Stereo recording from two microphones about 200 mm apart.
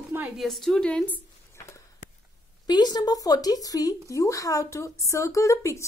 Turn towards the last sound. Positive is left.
turn(degrees=15)  # may be behind; listen again after turning